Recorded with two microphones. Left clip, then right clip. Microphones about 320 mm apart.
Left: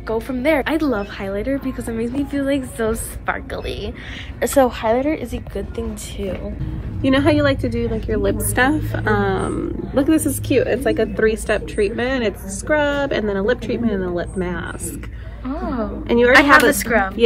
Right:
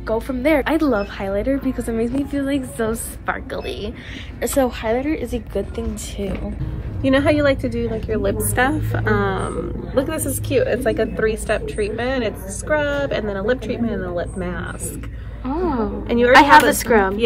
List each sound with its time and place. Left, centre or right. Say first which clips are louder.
0.0 s a woman's voice: even; centre
7.0 s a woman's voice: even; centre
8.5 s a woman's voice: left 2 dB; centre
9.1 s a woman's voice: left 2 dB; centre
15.4 s a woman's voice: right 3 dB; centre
16.1 s a woman's voice: left 3 dB; left
16.7 s a woman's voice: right 2 dB; centre